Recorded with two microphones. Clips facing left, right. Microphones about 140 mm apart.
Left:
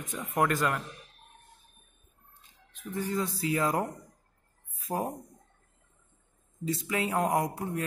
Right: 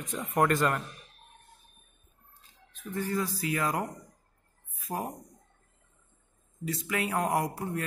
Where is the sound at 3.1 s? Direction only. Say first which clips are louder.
Left 2 dB; 25° left (ahead or behind).